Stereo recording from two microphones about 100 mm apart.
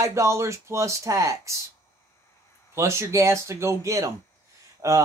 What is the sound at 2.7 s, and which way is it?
Speech, 25° right (ahead or behind).